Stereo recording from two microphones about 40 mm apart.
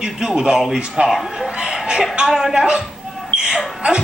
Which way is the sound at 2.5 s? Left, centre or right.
Right.